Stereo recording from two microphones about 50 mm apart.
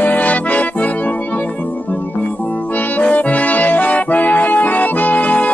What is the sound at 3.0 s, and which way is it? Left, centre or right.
Accordion, left.